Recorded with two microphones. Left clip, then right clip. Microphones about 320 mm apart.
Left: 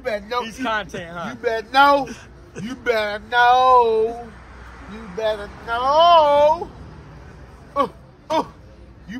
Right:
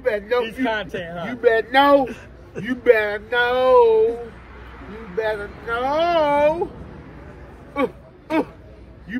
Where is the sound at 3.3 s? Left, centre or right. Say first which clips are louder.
Left 5 dB; left.